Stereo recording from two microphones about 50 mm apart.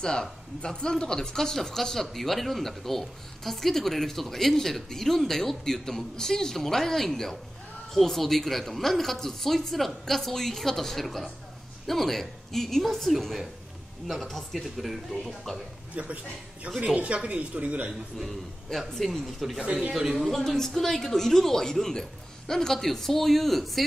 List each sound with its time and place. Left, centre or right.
0.0 s speech: centre
15.9 s a man's voice: right
18.2 s speech: centre
19.6 s speech: right
19.9 s speech: centre
20.2 s speech: centre